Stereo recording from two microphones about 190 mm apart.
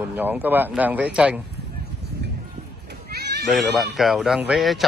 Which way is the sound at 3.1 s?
60° right (ahead or behind).